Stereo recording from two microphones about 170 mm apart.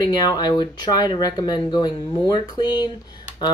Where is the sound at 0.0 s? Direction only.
25° left (ahead or behind).